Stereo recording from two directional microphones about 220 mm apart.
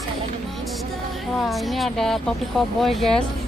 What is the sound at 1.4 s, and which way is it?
Speech, centre (ahead or behind).